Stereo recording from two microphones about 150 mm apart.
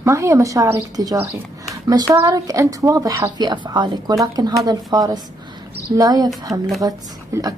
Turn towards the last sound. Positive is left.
turn(degrees=-25)  # may be behind; listen again after turning